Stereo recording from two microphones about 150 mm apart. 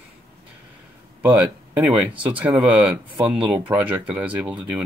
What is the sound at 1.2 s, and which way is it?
Speech, 10° right (ahead or behind).